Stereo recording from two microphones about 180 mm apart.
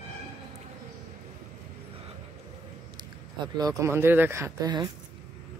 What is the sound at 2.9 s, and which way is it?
Speech, 25° right (ahead or behind).